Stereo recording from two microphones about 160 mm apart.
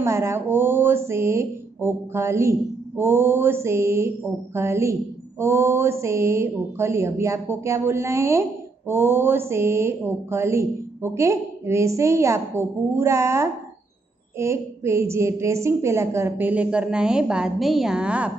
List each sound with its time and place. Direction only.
0.0 s speech: 15° right (ahead or behind)